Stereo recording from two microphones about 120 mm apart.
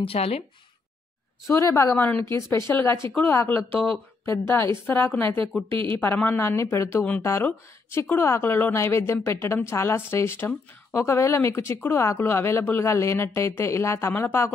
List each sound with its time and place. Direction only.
0.0 s a woman's voice: 55° left (ahead or behind)
1.6 s speech: 25° left (ahead or behind)
2.0 s speech: 15° left (ahead or behind)
5.7 s speech: 45° right (ahead or behind)
5.9 s speech: 15° left (ahead or behind)